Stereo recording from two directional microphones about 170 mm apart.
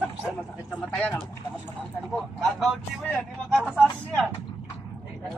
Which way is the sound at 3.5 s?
Centre (ahead or behind).